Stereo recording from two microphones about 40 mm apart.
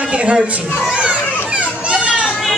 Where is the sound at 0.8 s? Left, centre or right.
Right.